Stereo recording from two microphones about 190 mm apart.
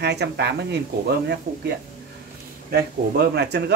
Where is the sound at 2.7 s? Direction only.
60° right (ahead or behind).